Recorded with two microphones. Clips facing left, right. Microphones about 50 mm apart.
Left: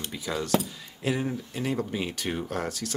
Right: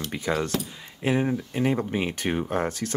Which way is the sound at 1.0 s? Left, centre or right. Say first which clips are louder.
Right 4 dB; right.